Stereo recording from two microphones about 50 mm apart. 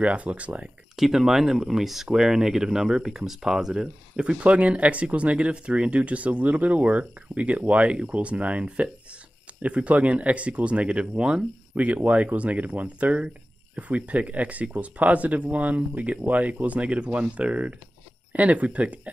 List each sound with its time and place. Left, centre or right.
0.0 s speech: right
0.9 s speech: centre
11.8 s speech: right